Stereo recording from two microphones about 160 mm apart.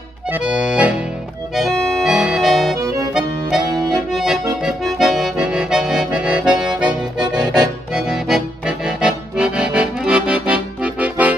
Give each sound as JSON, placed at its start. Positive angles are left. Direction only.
{"t": 0.3, "sound": "accordion", "side_deg": -5}
{"t": 2.8, "sound": "accordion", "side_deg": -20}
{"t": 3.1, "sound": "accordion", "side_deg": -5}